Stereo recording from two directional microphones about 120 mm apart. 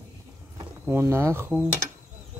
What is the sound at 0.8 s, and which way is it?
Speech, 20° right (ahead or behind).